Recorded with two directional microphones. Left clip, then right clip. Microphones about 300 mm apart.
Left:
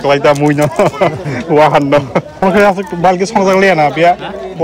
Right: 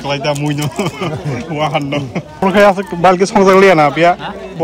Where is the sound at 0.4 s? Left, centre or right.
Centre.